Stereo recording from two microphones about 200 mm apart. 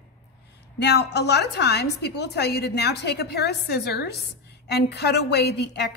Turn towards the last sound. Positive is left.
turn(degrees=55)  # may be behind; listen again after turning